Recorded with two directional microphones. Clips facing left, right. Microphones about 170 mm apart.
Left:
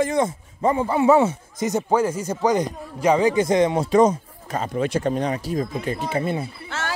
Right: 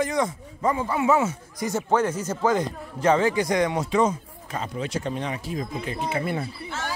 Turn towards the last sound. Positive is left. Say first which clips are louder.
# left 2 dB
turn(degrees=80)